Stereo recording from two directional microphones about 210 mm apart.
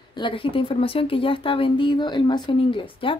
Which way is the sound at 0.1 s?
25° left (ahead or behind).